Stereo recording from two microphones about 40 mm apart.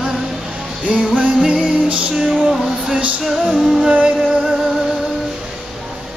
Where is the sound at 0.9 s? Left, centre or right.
Right.